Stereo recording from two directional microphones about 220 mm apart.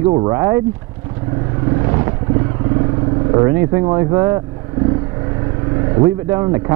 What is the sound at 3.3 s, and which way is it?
Speech, 15° right (ahead or behind).